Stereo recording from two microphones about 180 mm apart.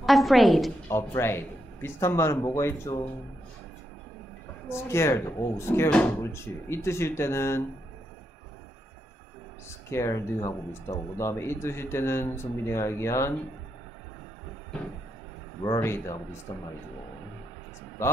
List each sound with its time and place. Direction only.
0.0 s a woman's voice: centre (ahead or behind)
0.8 s speech: 15° left (ahead or behind)
4.6 s speech: 15° left (ahead or behind)
9.7 s speech: 15° left (ahead or behind)
15.6 s speech: 20° left (ahead or behind)
18.0 s speech: 15° left (ahead or behind)